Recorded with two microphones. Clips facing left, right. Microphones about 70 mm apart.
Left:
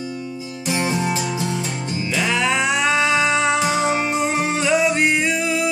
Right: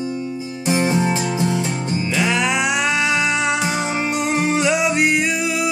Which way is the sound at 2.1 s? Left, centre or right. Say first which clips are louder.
Even; centre.